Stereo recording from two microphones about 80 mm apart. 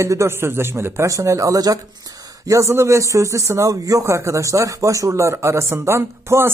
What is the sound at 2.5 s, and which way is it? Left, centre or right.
Speech, right.